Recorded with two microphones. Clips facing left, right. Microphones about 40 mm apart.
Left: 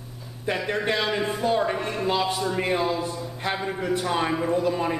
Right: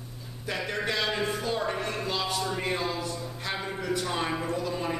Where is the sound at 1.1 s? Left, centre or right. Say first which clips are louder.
Left 5 dB; centre.